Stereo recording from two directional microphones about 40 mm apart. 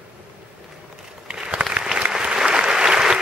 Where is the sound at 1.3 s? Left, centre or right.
Centre.